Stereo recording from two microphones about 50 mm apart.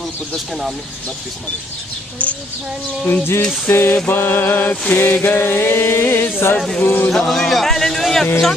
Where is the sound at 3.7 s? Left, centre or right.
Left.